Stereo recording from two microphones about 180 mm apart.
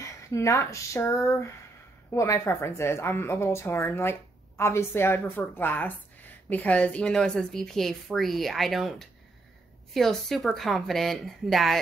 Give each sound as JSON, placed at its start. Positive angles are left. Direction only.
{"t": 0.0, "sound": "a woman's voice", "side_deg": 15}